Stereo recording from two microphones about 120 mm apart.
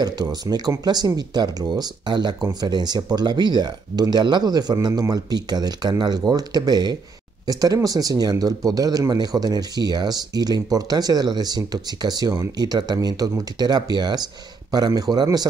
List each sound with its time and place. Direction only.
0.0 s speech: 35° right (ahead or behind)